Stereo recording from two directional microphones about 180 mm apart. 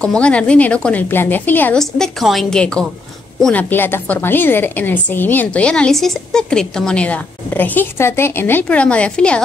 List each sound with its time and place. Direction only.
0.0 s a woman's voice: 5° left (ahead or behind)